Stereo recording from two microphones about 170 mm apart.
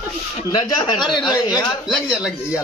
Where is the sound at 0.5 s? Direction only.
25° left (ahead or behind).